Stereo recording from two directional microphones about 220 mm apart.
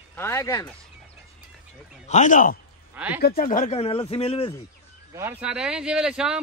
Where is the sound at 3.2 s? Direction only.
45° left (ahead or behind); by 4.5 s 25° left (ahead or behind).